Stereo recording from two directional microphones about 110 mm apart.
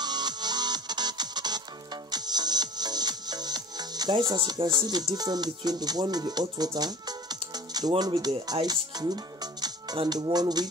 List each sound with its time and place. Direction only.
0.0 s music: 40° right (ahead or behind)
8.2 s speech: 40° right (ahead or behind)
8.6 s music: 40° right (ahead or behind)
10.0 s speech: 40° right (ahead or behind)